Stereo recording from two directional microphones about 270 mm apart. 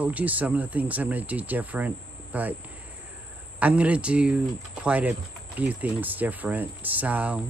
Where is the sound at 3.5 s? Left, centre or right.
Centre.